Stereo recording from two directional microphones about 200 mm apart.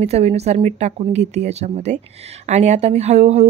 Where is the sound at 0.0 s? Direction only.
30° right (ahead or behind).